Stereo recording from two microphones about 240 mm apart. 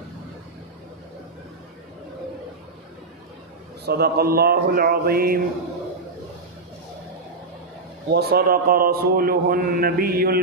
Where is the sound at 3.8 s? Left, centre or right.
Right.